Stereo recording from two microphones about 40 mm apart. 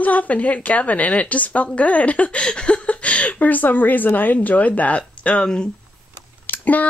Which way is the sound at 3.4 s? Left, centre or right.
Left.